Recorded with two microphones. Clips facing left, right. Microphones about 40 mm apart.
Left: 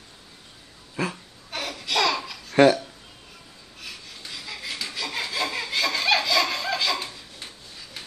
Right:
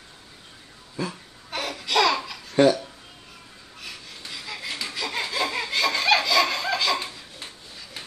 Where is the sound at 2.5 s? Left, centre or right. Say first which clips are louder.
Left 2 dB; left.